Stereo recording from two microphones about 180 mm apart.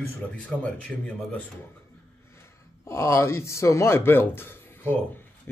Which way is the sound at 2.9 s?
15° left (ahead or behind).